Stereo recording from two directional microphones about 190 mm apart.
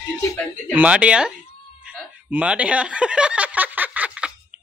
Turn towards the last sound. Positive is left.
turn(degrees=-5)  # may be behind; listen again after turning